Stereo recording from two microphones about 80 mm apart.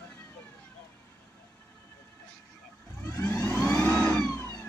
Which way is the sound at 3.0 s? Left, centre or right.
Left.